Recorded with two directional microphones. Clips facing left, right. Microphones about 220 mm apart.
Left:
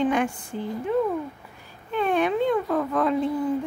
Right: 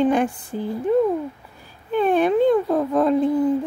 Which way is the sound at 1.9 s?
35° right (ahead or behind).